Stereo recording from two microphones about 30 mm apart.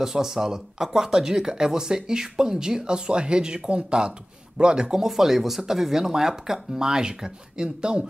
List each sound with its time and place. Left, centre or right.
0.0 s speech: centre
3.1 s speech: right; by 6.8 s centre
6.8 s speech: right